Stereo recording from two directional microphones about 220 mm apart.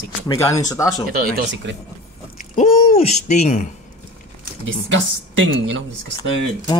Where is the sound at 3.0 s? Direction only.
30° left (ahead or behind).